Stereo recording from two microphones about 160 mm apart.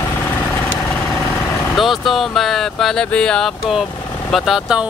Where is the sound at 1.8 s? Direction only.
Centre (ahead or behind).